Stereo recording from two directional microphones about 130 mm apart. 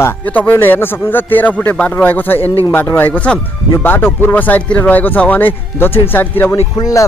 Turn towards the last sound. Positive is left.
turn(degrees=30)  # may be behind; listen again after turning